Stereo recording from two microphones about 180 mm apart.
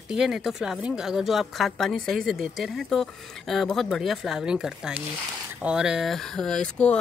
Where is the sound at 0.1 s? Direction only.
5° right (ahead or behind).